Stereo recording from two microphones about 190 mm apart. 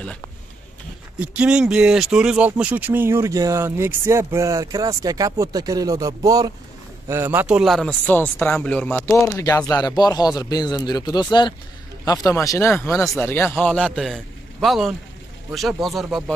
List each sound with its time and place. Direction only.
1.2 s a man's voice: 5° right (ahead or behind)